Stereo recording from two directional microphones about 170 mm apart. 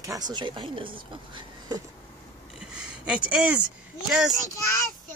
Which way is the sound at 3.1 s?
5° right (ahead or behind).